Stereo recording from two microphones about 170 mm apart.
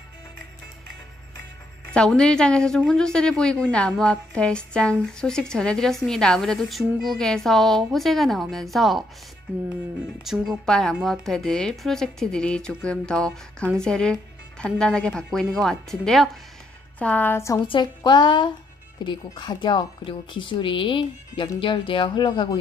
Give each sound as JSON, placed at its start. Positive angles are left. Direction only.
{"t": 2.0, "sound": "a woman's voice", "side_deg": 5}
{"t": 10.2, "sound": "a woman's voice", "side_deg": 0}
{"t": 17.6, "sound": "a woman's voice", "side_deg": 25}